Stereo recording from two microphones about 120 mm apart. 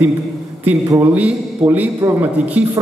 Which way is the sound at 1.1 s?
15° right (ahead or behind).